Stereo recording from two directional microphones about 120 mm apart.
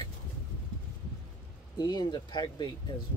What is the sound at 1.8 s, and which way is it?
Speech, 35° left (ahead or behind).